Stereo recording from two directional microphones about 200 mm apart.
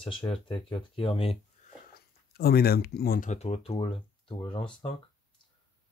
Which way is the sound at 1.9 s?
50° left (ahead or behind).